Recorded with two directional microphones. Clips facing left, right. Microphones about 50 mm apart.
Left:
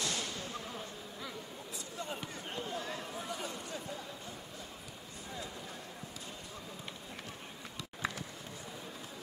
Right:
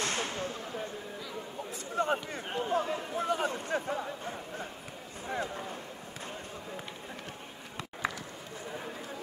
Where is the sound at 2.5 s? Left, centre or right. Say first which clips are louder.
Right 9 dB; right.